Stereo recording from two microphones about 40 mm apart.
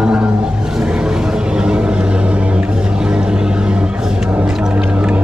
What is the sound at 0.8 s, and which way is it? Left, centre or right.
Vehicle, centre.